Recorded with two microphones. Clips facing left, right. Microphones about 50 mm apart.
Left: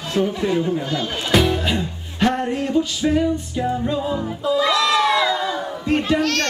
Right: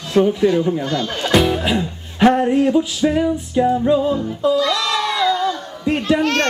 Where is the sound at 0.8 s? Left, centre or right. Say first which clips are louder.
Right 3 dB; centre.